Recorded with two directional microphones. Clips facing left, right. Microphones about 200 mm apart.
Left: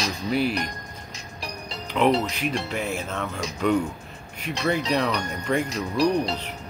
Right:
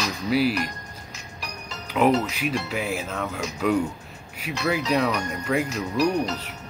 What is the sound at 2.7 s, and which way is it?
Speech, 5° right (ahead or behind).